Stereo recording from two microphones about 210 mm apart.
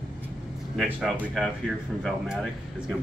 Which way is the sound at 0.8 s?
Centre (ahead or behind).